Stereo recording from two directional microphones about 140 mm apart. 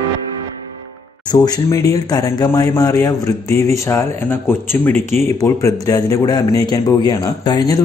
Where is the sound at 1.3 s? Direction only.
30° left (ahead or behind).